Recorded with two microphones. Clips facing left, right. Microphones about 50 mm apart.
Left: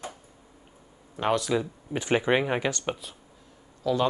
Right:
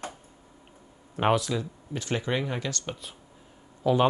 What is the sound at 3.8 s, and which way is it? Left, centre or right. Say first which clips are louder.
Speech: right 2 dB; right.